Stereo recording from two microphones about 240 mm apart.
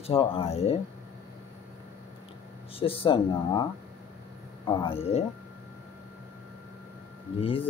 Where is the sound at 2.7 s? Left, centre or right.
Left.